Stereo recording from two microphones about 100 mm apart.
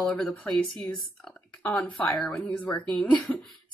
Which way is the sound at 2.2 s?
15° left (ahead or behind).